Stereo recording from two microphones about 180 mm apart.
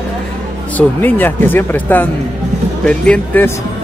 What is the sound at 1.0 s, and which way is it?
Speech, 10° left (ahead or behind).